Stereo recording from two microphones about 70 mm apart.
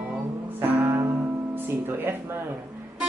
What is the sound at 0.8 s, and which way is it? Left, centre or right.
Music, right.